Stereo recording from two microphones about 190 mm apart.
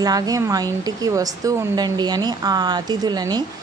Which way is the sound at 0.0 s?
20° right (ahead or behind).